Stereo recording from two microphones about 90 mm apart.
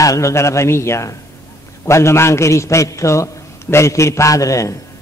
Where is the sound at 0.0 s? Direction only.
35° left (ahead or behind).